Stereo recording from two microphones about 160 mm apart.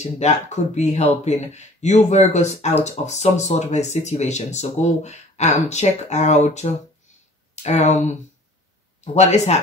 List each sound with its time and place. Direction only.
0.0 s speech: 45° left (ahead or behind)